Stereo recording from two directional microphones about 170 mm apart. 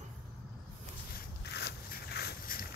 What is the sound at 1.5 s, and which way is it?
Zipper, 75° left (ahead or behind).